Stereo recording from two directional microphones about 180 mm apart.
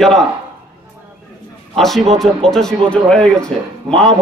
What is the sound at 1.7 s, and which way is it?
A man's voice, centre (ahead or behind).